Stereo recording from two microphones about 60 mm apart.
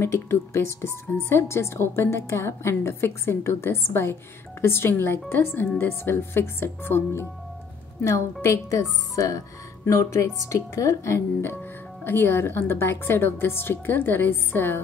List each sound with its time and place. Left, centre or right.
0.1 s speech: left
11.5 s speech: left